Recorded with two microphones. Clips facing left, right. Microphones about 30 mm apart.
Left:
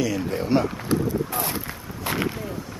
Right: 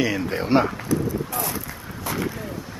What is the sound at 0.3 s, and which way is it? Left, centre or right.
Speech, right.